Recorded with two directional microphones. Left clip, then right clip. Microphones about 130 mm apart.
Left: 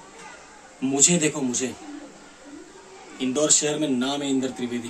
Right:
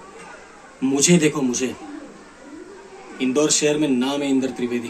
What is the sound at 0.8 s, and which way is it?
Speech, 20° left (ahead or behind).